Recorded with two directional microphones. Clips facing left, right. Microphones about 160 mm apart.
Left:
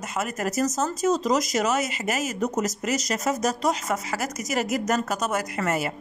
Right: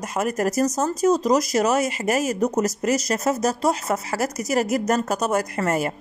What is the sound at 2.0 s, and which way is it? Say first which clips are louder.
Speech: right 5 dB; 35° right (ahead or behind).